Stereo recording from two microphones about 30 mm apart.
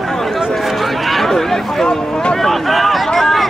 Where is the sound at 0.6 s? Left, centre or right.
Centre.